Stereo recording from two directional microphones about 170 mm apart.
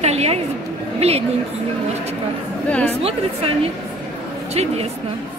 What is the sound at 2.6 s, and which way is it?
Speech, 10° left (ahead or behind).